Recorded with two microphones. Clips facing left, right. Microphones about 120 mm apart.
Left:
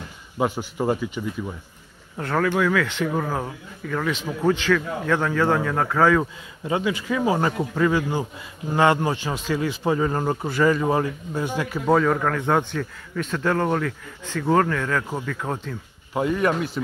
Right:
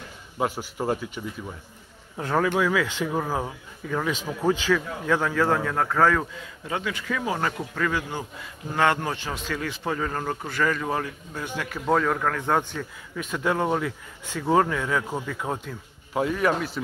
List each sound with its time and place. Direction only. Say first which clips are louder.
0.4 s speech: left 3 dB; centre (ahead or behind)
2.1 s speech: left 1 dB; 15° right (ahead or behind)
5.3 s speech: left 2 dB; centre (ahead or behind)
6.7 s speech: left 5 dB; 15° left (ahead or behind)
9.3 s speech: left 6 dB; 20° left (ahead or behind)
11.9 s speech: left 3 dB; centre (ahead or behind)
13.1 s speech: left 3 dB; 10° right (ahead or behind)
16.1 s speech: left 2 dB; centre (ahead or behind)